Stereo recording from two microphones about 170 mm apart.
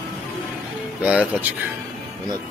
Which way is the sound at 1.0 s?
10° right (ahead or behind).